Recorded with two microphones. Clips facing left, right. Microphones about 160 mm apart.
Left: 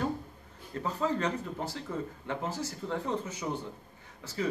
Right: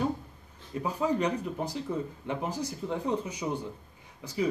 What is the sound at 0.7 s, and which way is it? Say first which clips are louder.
Speech: right 3 dB; 15° right (ahead or behind).